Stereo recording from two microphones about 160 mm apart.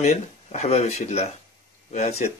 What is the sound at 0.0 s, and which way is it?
Speech, 45° left (ahead or behind).